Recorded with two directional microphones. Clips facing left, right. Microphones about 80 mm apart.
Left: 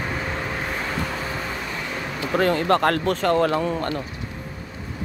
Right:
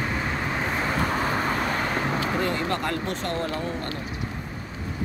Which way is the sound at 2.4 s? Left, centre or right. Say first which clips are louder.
Left 7 dB; left.